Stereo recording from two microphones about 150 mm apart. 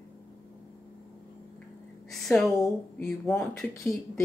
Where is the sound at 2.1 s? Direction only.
Centre (ahead or behind).